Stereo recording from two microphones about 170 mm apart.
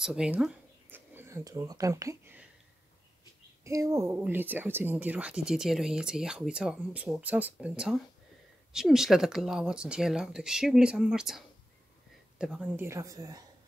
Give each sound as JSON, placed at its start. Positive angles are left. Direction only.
{"t": 0.0, "sound": "speech", "side_deg": -5}
{"t": 3.6, "sound": "speech", "side_deg": -20}
{"t": 12.8, "sound": "speech", "side_deg": -20}